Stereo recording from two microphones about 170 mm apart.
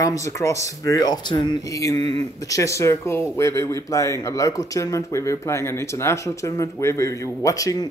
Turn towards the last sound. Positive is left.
turn(degrees=20)  # may be behind; listen again after turning